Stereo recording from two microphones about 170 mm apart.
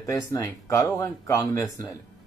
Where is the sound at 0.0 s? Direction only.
20° left (ahead or behind).